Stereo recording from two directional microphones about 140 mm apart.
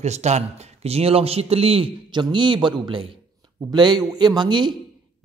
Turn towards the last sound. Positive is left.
turn(degrees=-30)  # may be behind; listen again after turning